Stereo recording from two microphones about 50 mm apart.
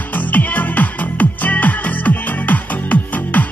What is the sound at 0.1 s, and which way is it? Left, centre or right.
Music, left.